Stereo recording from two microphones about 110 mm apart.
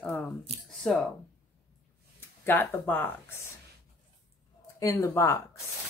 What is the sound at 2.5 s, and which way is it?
Speech, 20° left (ahead or behind).